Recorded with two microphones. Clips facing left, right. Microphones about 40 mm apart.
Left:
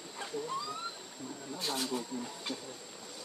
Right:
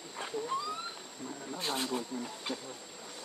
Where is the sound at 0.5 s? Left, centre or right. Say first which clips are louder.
Right 4 dB; right.